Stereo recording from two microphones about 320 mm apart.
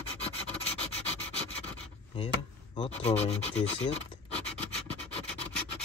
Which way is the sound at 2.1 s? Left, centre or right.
Centre.